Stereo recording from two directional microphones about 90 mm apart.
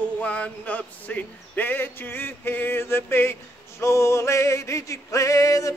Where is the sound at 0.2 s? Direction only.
15° left (ahead or behind).